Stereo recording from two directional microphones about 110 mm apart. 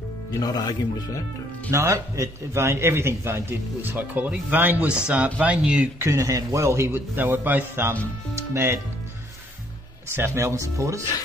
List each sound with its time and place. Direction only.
0.4 s speech: 35° left (ahead or behind)
1.7 s a man's voice: 25° right (ahead or behind)
5.9 s a man's voice: 30° right (ahead or behind)
10.1 s a man's voice: 25° right (ahead or behind)